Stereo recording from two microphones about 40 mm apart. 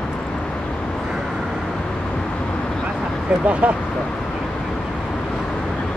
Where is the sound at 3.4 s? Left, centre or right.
Right.